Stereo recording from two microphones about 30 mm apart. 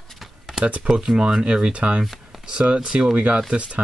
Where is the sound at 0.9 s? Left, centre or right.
Right.